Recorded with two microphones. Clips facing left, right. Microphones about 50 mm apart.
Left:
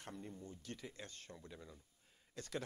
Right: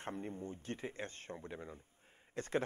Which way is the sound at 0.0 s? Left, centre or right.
Right.